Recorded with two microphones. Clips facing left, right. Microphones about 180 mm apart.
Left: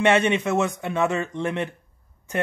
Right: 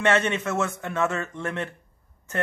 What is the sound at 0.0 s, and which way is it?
Speech, 15° left (ahead or behind).